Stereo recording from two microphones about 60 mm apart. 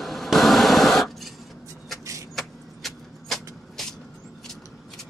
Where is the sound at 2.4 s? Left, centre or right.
Centre.